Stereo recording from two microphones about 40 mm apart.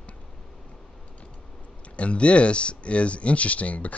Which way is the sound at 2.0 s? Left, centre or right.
Left.